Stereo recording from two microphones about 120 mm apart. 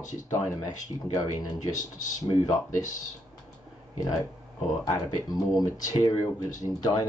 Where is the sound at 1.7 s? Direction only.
90° left.